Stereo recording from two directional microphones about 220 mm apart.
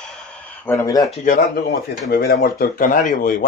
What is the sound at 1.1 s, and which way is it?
Speech, 35° left (ahead or behind).